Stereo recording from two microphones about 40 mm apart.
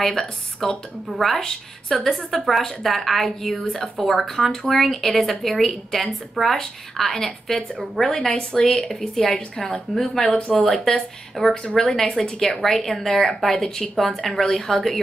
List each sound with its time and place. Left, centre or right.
0.0 s a woman's voice: centre
1.4 s speech: centre
2.0 s a woman's voice: centre